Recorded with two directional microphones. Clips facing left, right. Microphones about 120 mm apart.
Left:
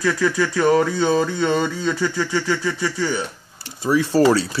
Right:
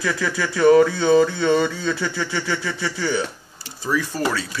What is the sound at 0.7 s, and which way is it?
Speech, 30° left (ahead or behind).